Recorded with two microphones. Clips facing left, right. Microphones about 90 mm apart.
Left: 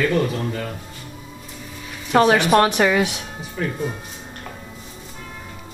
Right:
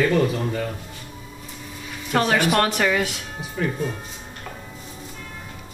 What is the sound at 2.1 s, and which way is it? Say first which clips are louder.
Speech: left 5 dB; 20° left (ahead or behind).